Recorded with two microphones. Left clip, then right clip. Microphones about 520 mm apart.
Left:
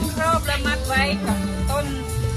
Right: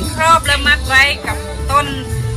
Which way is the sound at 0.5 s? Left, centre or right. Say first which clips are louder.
Right 11 dB; left.